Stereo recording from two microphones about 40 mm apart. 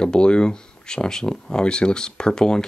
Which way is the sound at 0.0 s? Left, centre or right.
Left.